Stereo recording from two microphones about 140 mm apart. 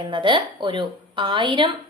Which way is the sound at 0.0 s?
35° right (ahead or behind).